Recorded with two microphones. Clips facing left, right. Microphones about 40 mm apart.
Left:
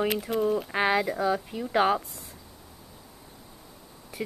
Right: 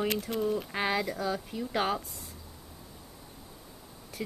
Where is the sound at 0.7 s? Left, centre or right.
Centre.